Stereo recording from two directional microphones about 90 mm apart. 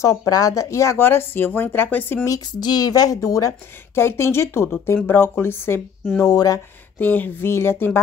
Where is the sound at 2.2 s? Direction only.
45° left (ahead or behind); by 5.8 s 25° left (ahead or behind).